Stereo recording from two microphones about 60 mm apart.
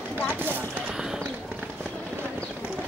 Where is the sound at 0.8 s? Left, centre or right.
Centre.